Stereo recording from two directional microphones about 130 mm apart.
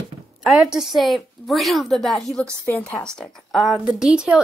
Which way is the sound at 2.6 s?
15° left (ahead or behind).